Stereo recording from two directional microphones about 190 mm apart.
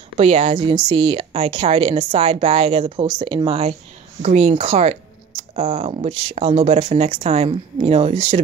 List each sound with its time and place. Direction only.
0.2 s speech: 35° right (ahead or behind)